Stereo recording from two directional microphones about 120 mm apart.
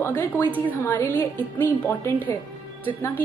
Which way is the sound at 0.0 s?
20° left (ahead or behind).